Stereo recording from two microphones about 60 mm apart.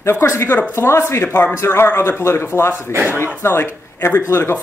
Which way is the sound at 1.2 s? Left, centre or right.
Left.